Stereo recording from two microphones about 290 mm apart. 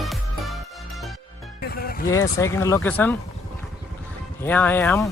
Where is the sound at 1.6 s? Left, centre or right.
Left.